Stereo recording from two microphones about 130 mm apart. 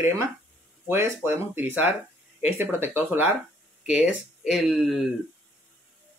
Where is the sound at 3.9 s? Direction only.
5° right (ahead or behind).